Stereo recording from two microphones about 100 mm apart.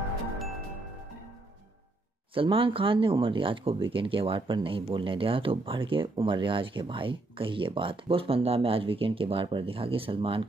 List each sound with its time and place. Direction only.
2.3 s speech: 65° right (ahead or behind)